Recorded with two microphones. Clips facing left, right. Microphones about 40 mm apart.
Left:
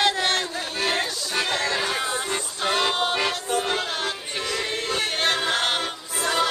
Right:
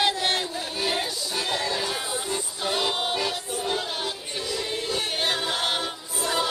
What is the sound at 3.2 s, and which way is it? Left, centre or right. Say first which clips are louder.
Music: left 4 dB; left.